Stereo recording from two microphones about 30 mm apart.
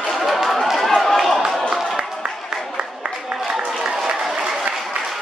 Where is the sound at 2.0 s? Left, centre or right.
Right.